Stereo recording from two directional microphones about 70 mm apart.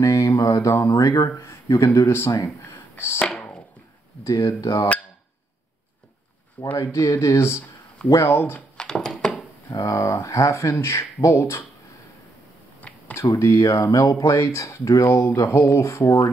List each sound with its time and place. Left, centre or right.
0.0 s speech: left
1.3 s speech: left
4.2 s speech: left
6.8 s speech: left
8.7 s a sound: centre
9.7 s speech: left
13.1 s speech: left